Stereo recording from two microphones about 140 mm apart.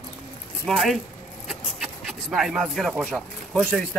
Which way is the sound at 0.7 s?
Centre (ahead or behind).